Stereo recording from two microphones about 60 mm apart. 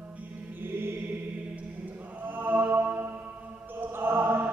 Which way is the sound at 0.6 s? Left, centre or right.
Right.